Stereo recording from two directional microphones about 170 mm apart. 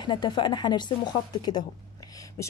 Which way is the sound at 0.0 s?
25° left (ahead or behind).